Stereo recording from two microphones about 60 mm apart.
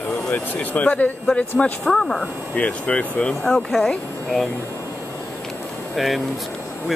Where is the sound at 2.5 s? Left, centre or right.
Centre.